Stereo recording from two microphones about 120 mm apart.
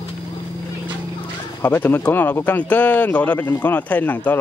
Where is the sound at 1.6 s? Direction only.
15° left (ahead or behind).